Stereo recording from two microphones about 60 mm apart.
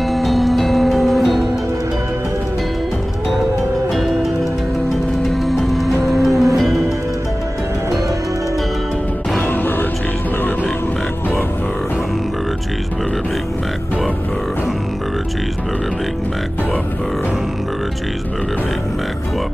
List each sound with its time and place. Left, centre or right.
0.0 s music: centre
3.9 s music: centre
9.5 s music: left